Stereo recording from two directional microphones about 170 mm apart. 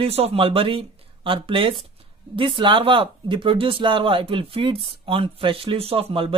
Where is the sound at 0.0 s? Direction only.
35° right (ahead or behind).